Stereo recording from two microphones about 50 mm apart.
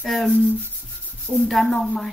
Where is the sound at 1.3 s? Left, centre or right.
Centre.